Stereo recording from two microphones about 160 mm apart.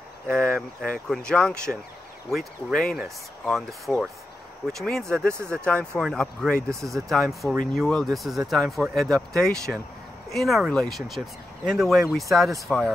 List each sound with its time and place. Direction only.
0.3 s speech: 5° left (ahead or behind)
6.7 s speech: 20° right (ahead or behind)
7.4 s speech: centre (ahead or behind)